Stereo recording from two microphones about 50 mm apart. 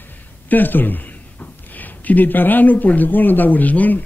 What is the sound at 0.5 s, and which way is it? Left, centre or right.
Speech, left.